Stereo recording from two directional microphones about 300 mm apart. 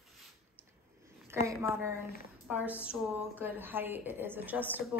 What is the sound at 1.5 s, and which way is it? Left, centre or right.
A woman's voice, centre.